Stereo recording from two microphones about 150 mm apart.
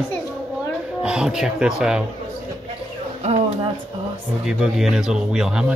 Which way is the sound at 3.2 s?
45° right (ahead or behind).